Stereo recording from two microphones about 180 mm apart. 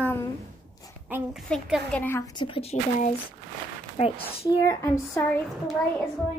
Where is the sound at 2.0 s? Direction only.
10° left (ahead or behind).